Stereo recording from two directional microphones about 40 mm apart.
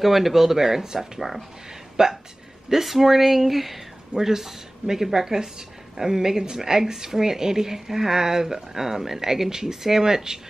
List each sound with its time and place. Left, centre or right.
0.0 s a woman's voice: centre
2.7 s a woman's voice: centre